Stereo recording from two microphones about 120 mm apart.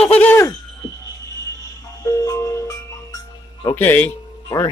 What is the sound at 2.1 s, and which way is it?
Music, 30° left (ahead or behind).